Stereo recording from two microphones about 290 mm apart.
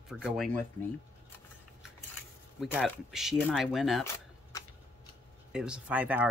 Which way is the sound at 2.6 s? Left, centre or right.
Centre.